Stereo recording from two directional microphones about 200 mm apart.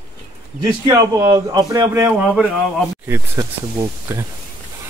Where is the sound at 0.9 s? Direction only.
15° right (ahead or behind).